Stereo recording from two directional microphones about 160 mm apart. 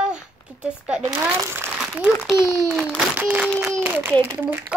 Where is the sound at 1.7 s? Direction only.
5° right (ahead or behind).